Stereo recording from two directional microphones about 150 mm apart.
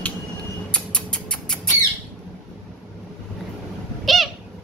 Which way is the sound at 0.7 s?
5° left (ahead or behind).